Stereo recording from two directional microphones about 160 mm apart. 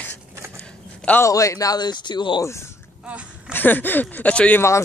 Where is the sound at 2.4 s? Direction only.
15° left (ahead or behind).